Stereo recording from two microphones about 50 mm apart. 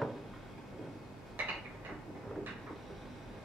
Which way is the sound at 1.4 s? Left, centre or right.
Right.